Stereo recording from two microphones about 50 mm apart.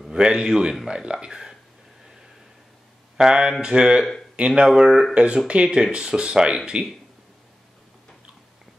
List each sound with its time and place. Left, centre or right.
0.1 s a man's voice: centre
3.2 s a man's voice: centre
5.1 s speech: right